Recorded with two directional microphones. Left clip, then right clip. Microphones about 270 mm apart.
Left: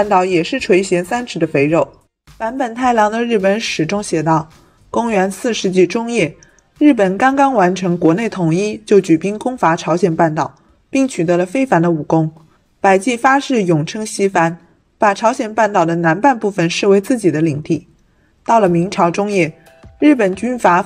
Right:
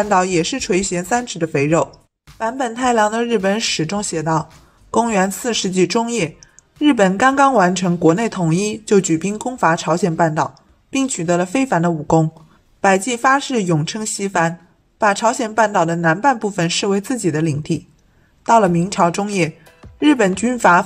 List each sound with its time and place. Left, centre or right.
0.0 s a woman's voice: centre